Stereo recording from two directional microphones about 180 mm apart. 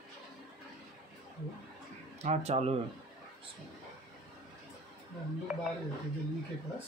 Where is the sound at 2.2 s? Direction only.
40° right (ahead or behind).